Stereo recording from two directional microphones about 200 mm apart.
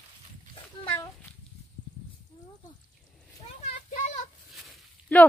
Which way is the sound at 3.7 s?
40° left (ahead or behind).